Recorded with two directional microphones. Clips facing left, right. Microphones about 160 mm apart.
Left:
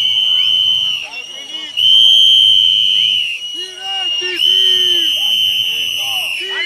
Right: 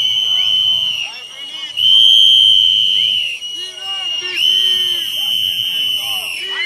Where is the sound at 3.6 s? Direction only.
70° left (ahead or behind).